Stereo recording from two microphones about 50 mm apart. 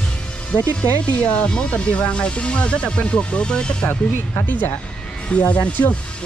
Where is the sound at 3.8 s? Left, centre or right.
Left.